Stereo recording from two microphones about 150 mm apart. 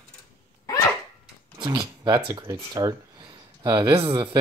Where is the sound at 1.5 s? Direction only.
30° right (ahead or behind).